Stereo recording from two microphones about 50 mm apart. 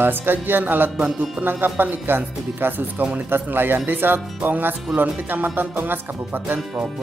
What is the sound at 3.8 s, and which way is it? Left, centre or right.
Music, right.